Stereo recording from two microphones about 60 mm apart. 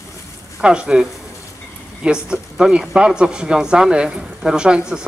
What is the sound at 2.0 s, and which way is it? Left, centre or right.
Speech, centre.